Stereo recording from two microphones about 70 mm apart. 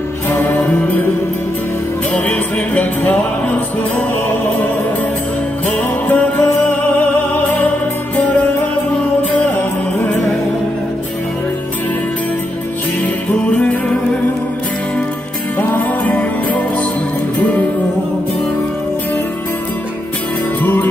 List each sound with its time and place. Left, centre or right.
0.3 s music: left
2.1 s music: centre
5.7 s music: left
13.0 s music: centre
15.6 s music: left
20.6 s music: left